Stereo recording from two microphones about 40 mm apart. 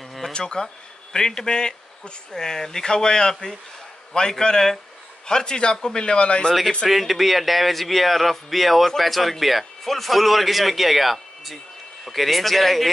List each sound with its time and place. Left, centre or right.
0.3 s speech: left
6.9 s a man's voice: centre